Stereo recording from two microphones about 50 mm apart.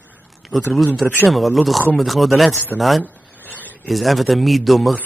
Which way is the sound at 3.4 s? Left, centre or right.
Left.